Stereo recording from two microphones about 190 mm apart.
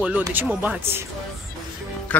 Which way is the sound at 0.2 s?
10° right (ahead or behind).